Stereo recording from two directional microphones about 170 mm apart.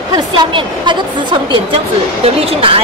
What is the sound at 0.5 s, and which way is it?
A woman's voice, 30° right (ahead or behind).